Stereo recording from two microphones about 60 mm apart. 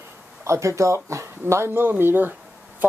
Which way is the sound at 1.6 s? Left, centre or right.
Right.